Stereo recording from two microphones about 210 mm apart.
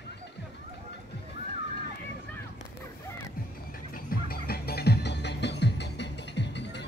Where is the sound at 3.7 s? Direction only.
45° left (ahead or behind).